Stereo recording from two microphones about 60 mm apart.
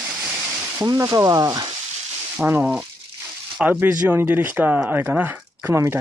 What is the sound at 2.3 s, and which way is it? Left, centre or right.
Speech, right.